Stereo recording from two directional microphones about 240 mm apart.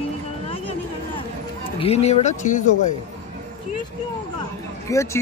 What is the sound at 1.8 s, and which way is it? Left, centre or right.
Speech, left.